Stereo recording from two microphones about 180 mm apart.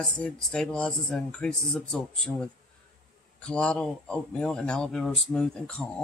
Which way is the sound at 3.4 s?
5° left (ahead or behind).